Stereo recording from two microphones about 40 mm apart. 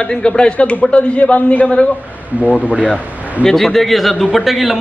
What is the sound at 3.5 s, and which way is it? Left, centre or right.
A man's voice, centre.